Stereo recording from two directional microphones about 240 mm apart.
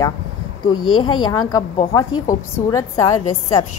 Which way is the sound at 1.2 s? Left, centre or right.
Centre.